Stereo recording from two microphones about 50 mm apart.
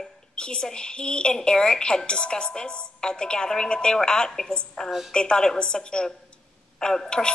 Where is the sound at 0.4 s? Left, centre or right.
Centre.